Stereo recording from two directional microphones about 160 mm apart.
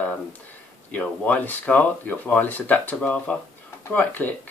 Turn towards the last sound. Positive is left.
turn(degrees=10)  # may be behind; listen again after turning